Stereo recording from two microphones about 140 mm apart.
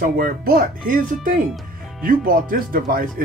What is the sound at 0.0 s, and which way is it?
Speech, 90° right.